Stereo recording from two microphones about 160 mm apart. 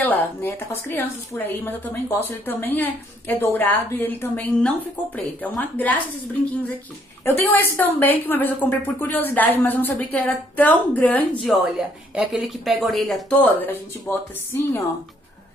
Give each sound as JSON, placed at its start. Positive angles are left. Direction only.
{"t": 0.0, "sound": "a woman's voice", "side_deg": 10}
{"t": 7.2, "sound": "a woman's voice", "side_deg": 15}
{"t": 11.5, "sound": "speech", "side_deg": 0}